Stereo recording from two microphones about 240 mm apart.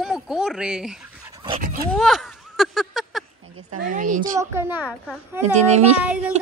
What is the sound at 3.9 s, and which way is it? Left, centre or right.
Speech, right.